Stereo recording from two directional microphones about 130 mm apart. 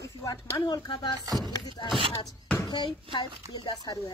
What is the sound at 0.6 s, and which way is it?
Speech, 35° left (ahead or behind).